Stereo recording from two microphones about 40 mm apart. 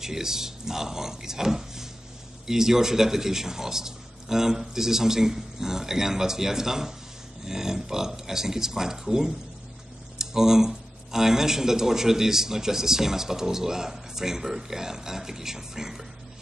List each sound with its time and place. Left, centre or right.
0.0 s speech: centre